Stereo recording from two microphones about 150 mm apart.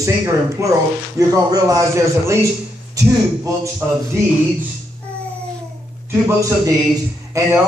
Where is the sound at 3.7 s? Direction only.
20° right (ahead or behind).